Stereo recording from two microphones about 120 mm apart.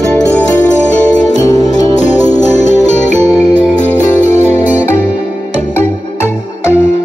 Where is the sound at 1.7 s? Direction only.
90° left.